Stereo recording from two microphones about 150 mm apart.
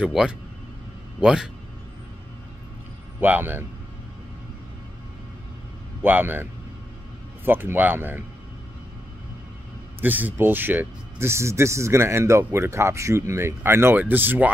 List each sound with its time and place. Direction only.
0.0 s speech: 5° right (ahead or behind)
3.2 s speech: 10° right (ahead or behind)
6.0 s speech: 10° right (ahead or behind)
9.9 s speech: 10° right (ahead or behind)